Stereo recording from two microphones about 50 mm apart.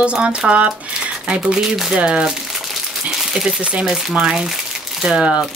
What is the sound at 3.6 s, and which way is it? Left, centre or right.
Speech, right.